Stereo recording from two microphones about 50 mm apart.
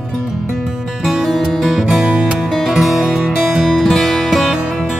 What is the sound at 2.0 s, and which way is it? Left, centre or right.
Music, centre.